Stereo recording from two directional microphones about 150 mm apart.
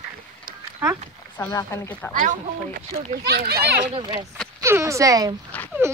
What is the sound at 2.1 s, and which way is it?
Speech, 60° right (ahead or behind).